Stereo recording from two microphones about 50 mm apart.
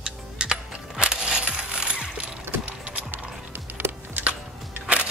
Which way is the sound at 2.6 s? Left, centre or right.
Right.